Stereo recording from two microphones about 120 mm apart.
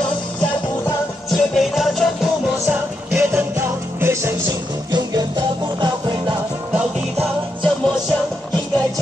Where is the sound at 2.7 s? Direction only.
10° right (ahead or behind).